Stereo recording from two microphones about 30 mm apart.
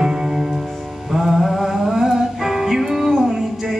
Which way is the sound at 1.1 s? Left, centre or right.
Centre.